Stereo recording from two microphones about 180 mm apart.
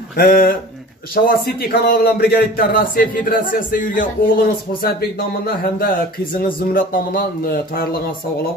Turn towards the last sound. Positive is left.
turn(degrees=55)  # may be behind; listen again after turning